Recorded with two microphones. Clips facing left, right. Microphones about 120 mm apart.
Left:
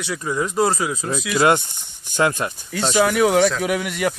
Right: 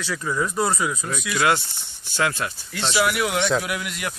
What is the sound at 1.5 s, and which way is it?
Speech, 20° left (ahead or behind).